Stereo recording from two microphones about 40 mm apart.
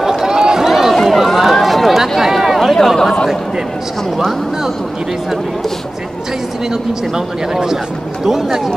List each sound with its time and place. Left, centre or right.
0.0 s run: centre
1.0 s a sound: centre
7.5 s speech: centre